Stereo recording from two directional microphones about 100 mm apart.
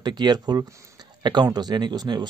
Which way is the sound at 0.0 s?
45° right (ahead or behind).